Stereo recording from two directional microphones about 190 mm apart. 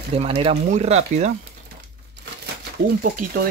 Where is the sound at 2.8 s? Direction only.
65° right (ahead or behind).